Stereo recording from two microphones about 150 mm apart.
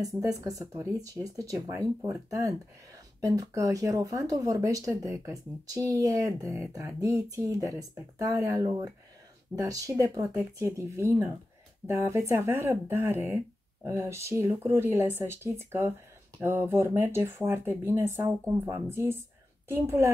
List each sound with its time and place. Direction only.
0.0 s speech: 25° right (ahead or behind)